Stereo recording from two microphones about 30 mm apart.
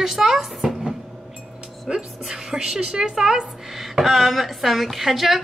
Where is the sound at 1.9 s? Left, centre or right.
Right.